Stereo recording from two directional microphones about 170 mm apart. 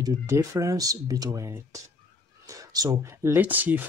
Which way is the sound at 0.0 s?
20° right (ahead or behind).